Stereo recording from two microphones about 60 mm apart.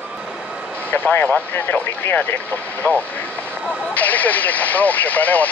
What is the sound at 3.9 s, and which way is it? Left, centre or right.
Speech, left.